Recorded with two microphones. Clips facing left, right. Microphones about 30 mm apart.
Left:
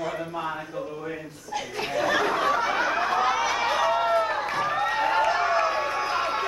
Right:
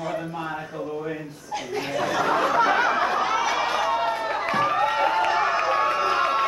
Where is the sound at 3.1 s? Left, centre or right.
Centre.